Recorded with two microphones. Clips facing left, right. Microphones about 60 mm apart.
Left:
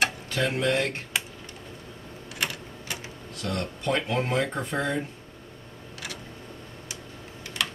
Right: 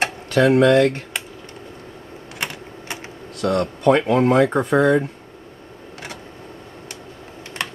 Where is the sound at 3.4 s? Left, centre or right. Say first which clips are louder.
Right 12 dB; right.